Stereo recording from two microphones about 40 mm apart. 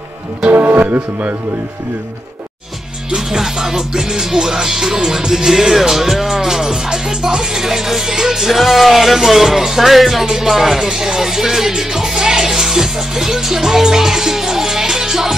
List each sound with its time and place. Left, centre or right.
0.5 s speech: right
3.3 s music: centre